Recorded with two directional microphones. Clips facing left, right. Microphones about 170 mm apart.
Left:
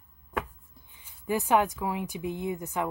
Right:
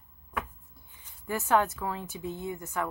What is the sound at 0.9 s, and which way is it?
Speech, 15° left (ahead or behind).